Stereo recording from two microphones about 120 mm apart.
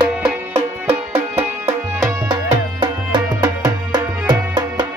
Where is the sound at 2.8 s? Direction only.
40° right (ahead or behind).